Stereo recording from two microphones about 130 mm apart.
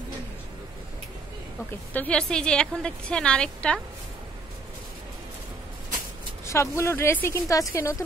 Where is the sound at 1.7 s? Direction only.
15° left (ahead or behind).